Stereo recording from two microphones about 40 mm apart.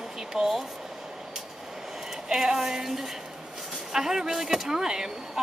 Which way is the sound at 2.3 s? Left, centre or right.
Centre.